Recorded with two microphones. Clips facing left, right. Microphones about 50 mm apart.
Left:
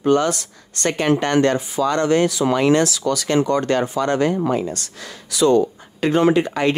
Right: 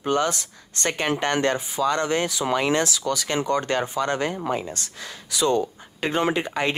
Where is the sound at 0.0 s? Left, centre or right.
Right.